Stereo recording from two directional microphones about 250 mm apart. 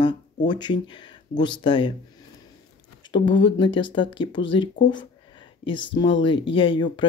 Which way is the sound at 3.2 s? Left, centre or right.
Left.